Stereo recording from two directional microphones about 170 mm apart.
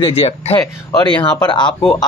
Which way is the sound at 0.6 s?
25° left (ahead or behind).